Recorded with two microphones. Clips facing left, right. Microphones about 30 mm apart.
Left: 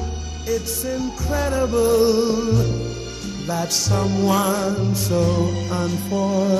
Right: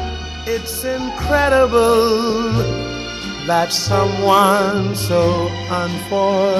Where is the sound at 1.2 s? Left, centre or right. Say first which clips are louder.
Right 9 dB; right.